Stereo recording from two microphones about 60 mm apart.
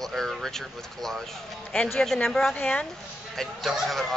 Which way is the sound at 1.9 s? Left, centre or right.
Centre.